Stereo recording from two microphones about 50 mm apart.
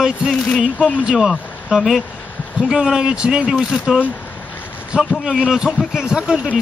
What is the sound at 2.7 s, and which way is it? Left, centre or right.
Speech, centre.